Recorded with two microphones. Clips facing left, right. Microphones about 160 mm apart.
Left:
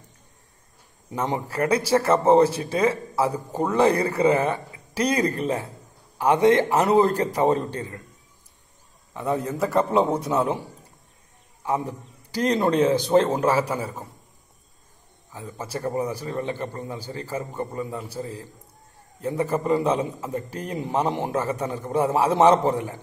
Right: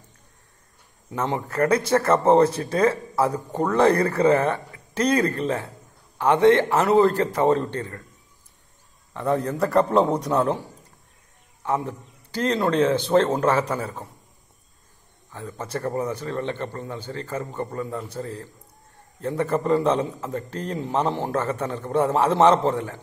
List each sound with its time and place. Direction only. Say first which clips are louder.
1.1 s a man's voice: right 1 dB; 10° left (ahead or behind)
2.7 s speech: right 1 dB; 25° left (ahead or behind)
3.3 s a man's voice: right 1 dB; 10° left (ahead or behind)
3.8 s speech: right 2 dB; 30° left (ahead or behind)
4.2 s a man's voice: left 1 dB; 10° left (ahead or behind)
9.1 s a man's voice: right 2 dB; 5° left (ahead or behind)
11.6 s a man's voice: even; 10° left (ahead or behind)
15.3 s a man's voice: right 2 dB; 10° left (ahead or behind)